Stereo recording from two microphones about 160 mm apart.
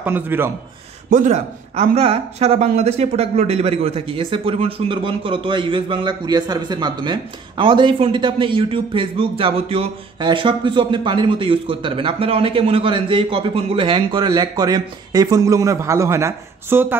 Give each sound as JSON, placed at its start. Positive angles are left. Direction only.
{"t": 0.0, "sound": "a man's voice", "side_deg": -15}
{"t": 1.1, "sound": "speech", "side_deg": -50}